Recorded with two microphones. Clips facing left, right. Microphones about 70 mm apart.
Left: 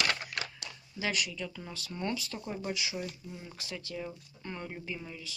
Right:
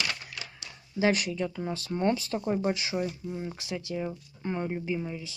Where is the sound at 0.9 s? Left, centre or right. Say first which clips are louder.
Right 8 dB; right.